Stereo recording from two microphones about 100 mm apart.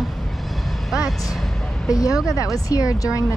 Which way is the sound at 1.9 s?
35° left (ahead or behind).